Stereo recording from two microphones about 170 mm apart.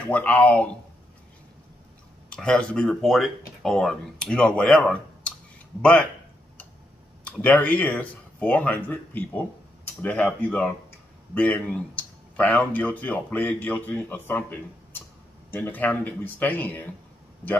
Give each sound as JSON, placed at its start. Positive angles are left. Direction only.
{"t": 0.1, "sound": "speech", "side_deg": 10}
{"t": 2.2, "sound": "speech", "side_deg": 5}
{"t": 7.2, "sound": "speech", "side_deg": 10}